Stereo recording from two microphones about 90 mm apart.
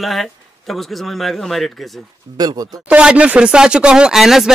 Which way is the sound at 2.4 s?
45° right (ahead or behind).